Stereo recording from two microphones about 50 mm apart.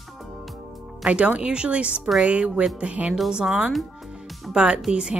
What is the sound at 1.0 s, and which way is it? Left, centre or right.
Speech, right.